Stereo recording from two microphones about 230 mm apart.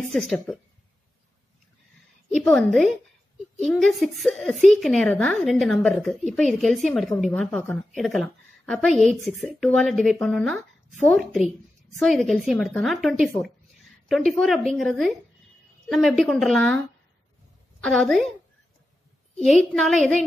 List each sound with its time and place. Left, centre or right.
0.1 s a woman's voice: centre
2.2 s a woman's voice: centre
9.2 s speech: left
9.6 s a woman's voice: centre
17.8 s a woman's voice: centre
19.4 s a woman's voice: centre